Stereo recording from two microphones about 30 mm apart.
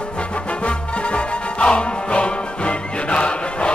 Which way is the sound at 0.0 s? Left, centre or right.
Left.